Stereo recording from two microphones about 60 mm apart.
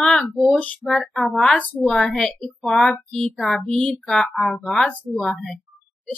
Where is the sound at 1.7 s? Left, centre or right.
Centre.